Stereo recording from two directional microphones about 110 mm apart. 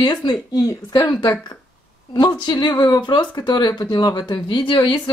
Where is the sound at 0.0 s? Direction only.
40° left (ahead or behind).